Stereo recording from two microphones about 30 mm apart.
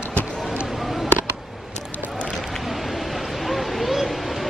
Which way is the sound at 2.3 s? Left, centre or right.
Centre.